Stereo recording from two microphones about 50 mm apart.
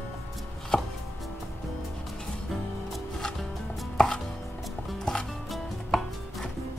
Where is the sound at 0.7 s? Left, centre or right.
Centre.